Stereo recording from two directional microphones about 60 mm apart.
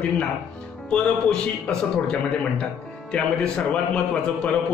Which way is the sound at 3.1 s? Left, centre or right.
Centre.